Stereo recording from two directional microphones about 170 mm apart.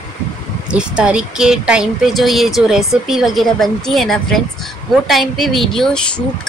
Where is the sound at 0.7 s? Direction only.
5° right (ahead or behind).